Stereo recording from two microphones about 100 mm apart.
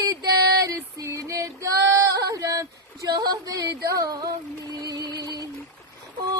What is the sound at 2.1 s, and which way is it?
Female singing, 35° right (ahead or behind).